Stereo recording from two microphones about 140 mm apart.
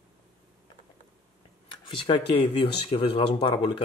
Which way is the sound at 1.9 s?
40° left (ahead or behind).